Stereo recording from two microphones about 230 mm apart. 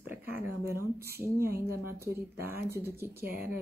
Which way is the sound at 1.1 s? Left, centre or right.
Centre.